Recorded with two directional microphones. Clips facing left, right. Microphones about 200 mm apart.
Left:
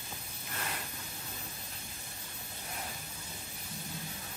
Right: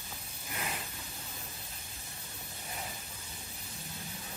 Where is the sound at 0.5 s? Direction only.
5° right (ahead or behind).